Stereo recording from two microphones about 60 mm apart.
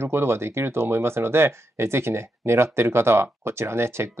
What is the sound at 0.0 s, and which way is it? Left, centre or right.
Speech, right.